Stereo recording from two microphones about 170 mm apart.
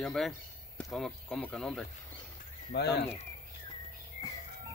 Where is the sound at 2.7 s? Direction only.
75° left (ahead or behind).